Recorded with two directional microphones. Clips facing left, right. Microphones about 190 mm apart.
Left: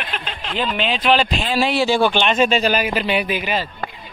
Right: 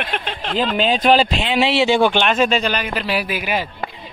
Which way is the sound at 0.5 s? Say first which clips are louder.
Right 4 dB; 35° right (ahead or behind).